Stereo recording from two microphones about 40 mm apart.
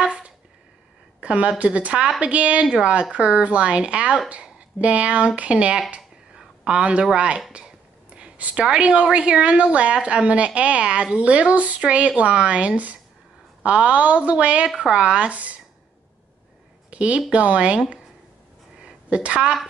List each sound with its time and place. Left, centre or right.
1.2 s a woman's voice: right
5.9 s a sound: centre
7.2 s a woman's voice: right
7.5 s a sound: right
8.4 s a woman's voice: right
16.9 s a woman's voice: right
19.0 s a woman's voice: right